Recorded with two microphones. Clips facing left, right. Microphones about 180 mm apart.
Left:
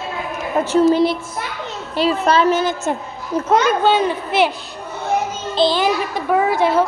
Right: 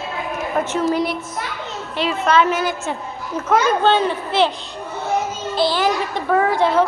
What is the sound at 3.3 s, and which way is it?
Speech, 35° left (ahead or behind).